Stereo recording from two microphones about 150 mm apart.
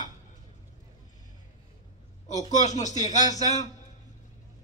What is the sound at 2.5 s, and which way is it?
A man's voice, 50° left (ahead or behind).